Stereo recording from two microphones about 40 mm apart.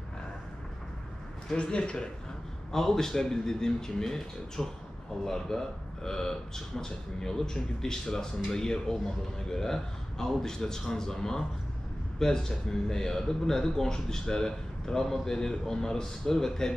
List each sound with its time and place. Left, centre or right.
1.6 s speech: left
2.7 s speech: centre